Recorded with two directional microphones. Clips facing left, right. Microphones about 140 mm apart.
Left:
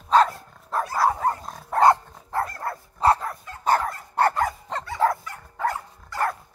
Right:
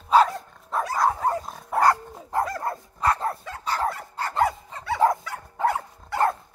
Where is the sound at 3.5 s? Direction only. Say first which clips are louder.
Right 4 dB; 90° right.